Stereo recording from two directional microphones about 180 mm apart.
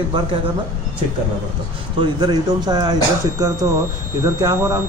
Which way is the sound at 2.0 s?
25° right (ahead or behind).